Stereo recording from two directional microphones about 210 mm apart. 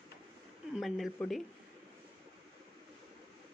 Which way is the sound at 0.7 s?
Centre (ahead or behind).